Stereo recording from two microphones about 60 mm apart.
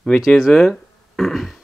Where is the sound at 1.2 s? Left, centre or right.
Centre.